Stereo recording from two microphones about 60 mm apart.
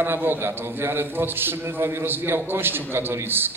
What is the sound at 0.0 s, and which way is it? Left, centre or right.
A man's voice, right.